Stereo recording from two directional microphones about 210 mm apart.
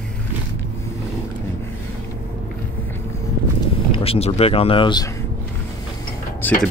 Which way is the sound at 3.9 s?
25° left (ahead or behind).